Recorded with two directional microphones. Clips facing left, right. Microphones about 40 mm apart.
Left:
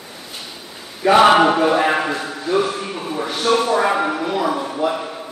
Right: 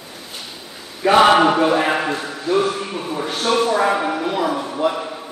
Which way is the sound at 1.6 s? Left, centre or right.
Centre.